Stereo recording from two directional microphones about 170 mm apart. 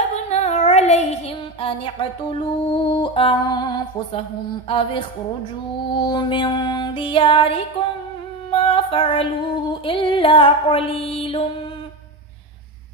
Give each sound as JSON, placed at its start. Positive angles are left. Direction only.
{"t": 0.1, "sound": "child singing", "side_deg": 40}
{"t": 2.7, "sound": "music", "side_deg": 30}
{"t": 4.6, "sound": "female singing", "side_deg": 30}
{"t": 5.9, "sound": "music", "side_deg": 25}
{"t": 8.5, "sound": "female singing", "side_deg": 30}